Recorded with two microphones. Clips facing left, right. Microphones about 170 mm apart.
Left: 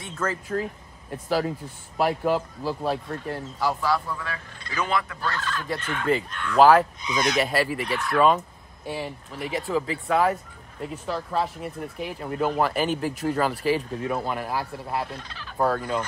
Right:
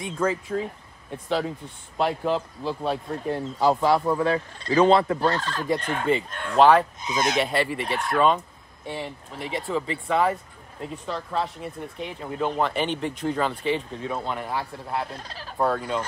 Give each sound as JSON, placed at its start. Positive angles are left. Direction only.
{"t": 0.0, "sound": "speech", "side_deg": -15}
{"t": 1.1, "sound": "speech", "side_deg": 5}
{"t": 3.3, "sound": "speech", "side_deg": -20}
{"t": 6.6, "sound": "speech", "side_deg": 5}
{"t": 7.0, "sound": "speech", "side_deg": -45}
{"t": 7.3, "sound": "speech", "side_deg": 0}
{"t": 15.1, "sound": "fowl", "side_deg": -35}
{"t": 15.6, "sound": "speech", "side_deg": 0}